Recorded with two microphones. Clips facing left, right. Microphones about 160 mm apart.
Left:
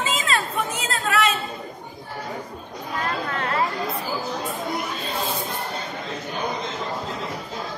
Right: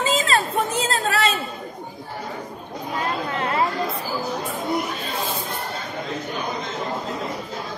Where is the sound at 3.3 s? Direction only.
20° right (ahead or behind).